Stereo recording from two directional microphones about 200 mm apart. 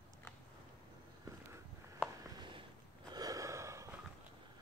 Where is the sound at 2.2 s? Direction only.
25° right (ahead or behind).